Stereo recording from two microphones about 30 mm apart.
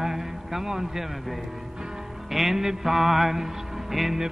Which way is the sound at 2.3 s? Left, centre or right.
Centre.